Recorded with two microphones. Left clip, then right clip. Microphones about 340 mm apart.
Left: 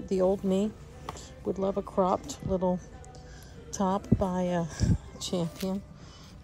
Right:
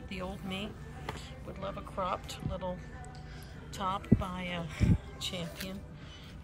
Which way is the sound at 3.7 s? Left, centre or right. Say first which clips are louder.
Left 5 dB; left.